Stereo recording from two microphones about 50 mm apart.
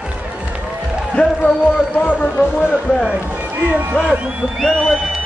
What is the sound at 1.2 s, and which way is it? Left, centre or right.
Speech, left.